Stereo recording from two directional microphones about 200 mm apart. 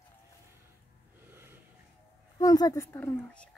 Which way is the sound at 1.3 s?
10° right (ahead or behind).